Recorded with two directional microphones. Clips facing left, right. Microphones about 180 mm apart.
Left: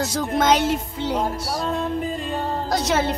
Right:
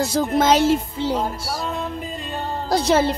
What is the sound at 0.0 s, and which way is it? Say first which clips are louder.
Speech: right 4 dB; 30° right (ahead or behind).